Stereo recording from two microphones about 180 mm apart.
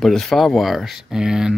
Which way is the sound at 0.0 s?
Centre (ahead or behind).